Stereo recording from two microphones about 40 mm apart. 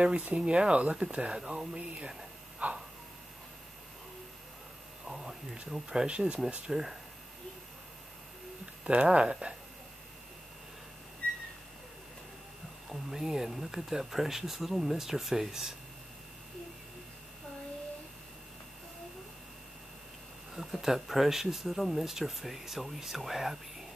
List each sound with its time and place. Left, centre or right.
0.4 s speech: right
1.4 s speech: centre
1.8 s speech: right
2.6 s a sound: right
5.0 s speech: centre
6.7 s speech: centre
8.8 s speech: right
12.9 s speech: centre
20.5 s speech: centre